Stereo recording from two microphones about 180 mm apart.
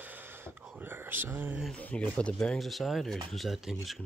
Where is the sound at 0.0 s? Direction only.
10° right (ahead or behind).